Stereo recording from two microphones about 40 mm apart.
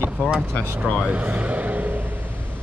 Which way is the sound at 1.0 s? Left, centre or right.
Right.